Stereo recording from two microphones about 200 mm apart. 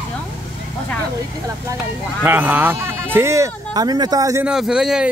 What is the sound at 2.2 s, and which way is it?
Speech, 10° right (ahead or behind).